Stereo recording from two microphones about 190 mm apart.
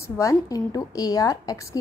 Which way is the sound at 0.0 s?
15° left (ahead or behind).